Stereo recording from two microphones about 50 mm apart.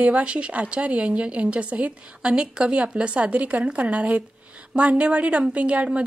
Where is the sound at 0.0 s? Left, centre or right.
Right.